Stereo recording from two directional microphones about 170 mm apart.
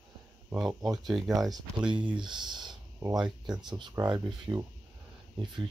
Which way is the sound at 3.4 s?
25° right (ahead or behind).